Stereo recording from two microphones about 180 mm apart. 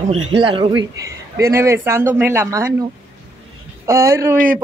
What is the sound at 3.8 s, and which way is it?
Speech, 15° right (ahead or behind).